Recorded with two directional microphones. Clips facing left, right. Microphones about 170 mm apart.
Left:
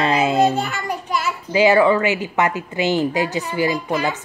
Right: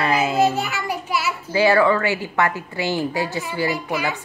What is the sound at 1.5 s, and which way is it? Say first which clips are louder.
A woman's voice: left 2 dB; 20° left (ahead or behind).